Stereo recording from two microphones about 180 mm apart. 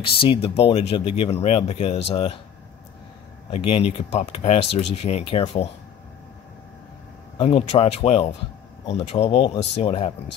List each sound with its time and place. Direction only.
0.2 s speech: 30° left (ahead or behind)
3.4 s speech: 35° left (ahead or behind)
7.3 s speech: 35° left (ahead or behind)